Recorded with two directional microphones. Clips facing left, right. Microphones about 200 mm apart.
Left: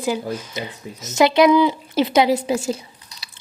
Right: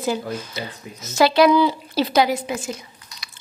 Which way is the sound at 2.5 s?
30° left (ahead or behind).